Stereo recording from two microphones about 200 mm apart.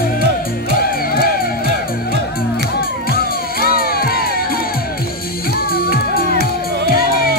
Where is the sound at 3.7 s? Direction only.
50° left (ahead or behind).